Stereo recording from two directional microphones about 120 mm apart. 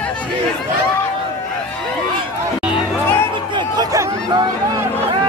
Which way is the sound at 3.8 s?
35° right (ahead or behind).